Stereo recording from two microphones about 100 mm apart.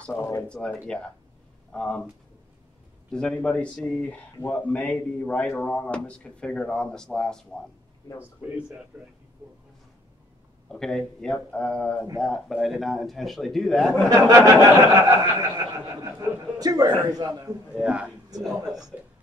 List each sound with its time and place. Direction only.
0.1 s a man's voice: 20° left (ahead or behind)
3.1 s a man's voice: 10° left (ahead or behind)
8.4 s speech: 15° right (ahead or behind)
10.7 s a man's voice: 5° left (ahead or behind)
14.0 s speech: 35° right (ahead or behind)
17.7 s a man's voice: 10° right (ahead or behind)